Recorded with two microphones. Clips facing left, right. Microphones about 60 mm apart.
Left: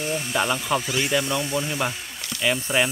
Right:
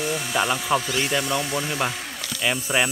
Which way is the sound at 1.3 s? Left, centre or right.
Right.